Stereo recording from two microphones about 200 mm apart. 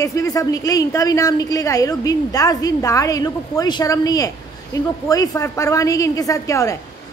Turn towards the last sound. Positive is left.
turn(degrees=15)  # may be behind; listen again after turning